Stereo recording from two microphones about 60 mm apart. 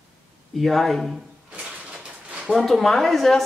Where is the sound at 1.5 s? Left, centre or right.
Centre.